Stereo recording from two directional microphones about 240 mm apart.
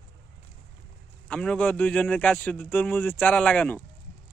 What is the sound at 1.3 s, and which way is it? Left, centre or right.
Speech, centre.